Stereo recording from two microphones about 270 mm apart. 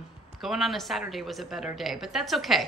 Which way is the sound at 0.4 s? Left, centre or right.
Centre.